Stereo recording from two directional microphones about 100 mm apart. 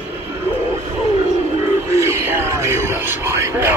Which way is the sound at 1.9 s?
30° right (ahead or behind).